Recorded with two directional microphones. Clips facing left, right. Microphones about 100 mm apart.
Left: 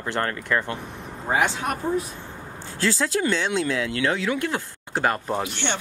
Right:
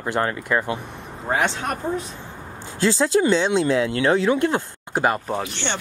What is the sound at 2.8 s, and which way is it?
Speech, 25° right (ahead or behind).